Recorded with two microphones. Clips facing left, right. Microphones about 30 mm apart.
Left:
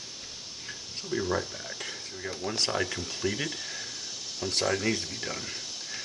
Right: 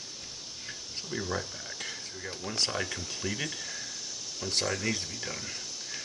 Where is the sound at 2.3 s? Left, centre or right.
Centre.